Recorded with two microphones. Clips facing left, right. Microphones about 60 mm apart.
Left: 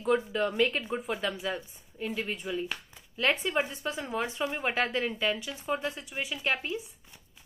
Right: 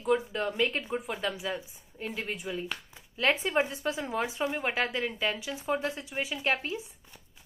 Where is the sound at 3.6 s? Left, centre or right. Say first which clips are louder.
Right 3 dB; right.